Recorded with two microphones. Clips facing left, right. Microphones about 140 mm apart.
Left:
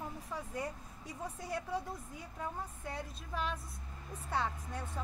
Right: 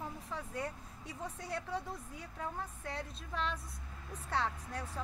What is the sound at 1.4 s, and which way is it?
Speech, 5° left (ahead or behind).